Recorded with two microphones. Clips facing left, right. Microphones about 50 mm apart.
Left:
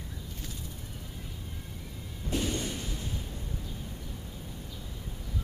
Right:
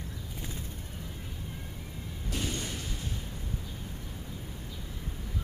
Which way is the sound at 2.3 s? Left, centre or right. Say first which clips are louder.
Left 4 dB; centre.